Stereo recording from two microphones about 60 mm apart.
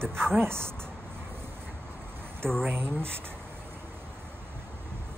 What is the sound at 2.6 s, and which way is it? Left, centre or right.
Speech, right.